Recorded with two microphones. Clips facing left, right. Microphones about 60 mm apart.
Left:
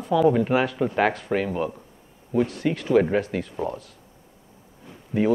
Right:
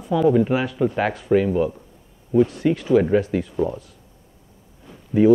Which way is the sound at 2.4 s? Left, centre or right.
Centre.